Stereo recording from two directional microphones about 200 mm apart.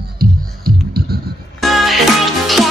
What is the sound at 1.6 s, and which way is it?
Music, centre (ahead or behind).